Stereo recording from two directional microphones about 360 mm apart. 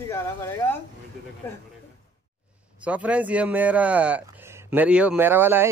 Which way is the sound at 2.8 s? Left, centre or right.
Centre.